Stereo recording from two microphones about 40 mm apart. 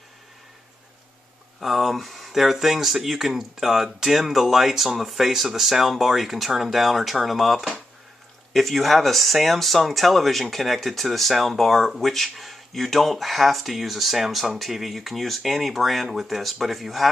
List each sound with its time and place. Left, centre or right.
1.6 s speech: centre